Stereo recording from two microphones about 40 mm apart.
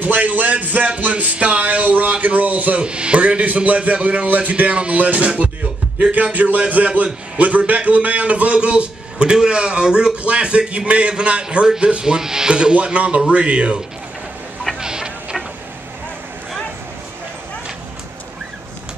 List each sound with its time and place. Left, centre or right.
0.0 s speech: right
2.8 s speech: right
6.3 s a man's voice: right
11.6 s a man's voice: centre
14.8 s music: centre